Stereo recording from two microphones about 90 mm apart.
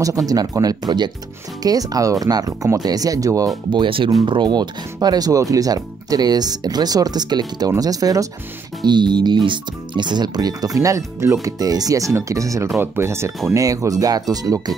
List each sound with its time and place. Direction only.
0.0 s speech: 40° right (ahead or behind)
3.7 s speech: 70° right (ahead or behind)
4.3 s speech: 55° right (ahead or behind)
5.0 s speech: 45° right (ahead or behind)
8.8 s speech: 55° right (ahead or behind)